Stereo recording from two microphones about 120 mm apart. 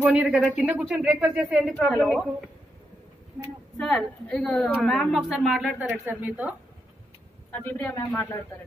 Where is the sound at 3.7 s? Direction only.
5° left (ahead or behind); by 6.5 s 15° right (ahead or behind).